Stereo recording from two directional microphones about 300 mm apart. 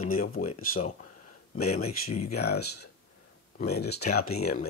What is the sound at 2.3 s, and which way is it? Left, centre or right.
Speech, left.